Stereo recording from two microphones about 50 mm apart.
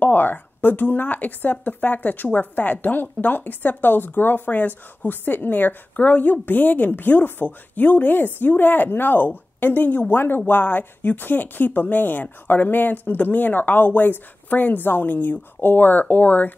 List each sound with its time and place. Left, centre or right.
0.0 s a woman's voice: left